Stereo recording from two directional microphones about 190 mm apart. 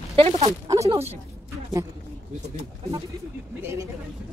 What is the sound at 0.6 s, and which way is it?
Speech, 15° right (ahead or behind).